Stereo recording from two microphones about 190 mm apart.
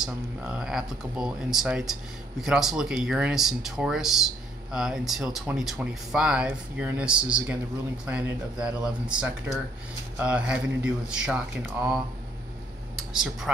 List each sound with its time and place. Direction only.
0.0 s speech: 5° right (ahead or behind)